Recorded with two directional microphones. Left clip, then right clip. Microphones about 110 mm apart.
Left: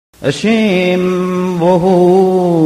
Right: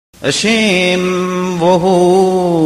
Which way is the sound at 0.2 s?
25° left (ahead or behind).